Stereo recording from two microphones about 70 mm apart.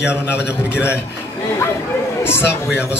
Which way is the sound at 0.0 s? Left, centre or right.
Left.